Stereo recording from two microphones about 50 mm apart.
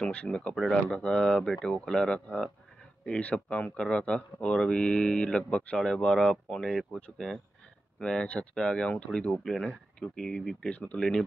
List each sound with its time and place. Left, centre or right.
0.0 s speech: left
0.6 s speech: centre
0.9 s speech: left
8.0 s speech: centre
9.4 s speech: centre
10.7 s speech: left